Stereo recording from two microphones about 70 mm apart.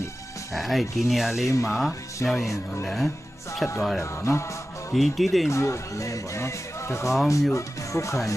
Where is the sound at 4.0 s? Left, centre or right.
Left.